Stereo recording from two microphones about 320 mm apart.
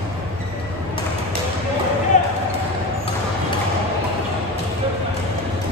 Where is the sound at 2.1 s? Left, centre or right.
Left.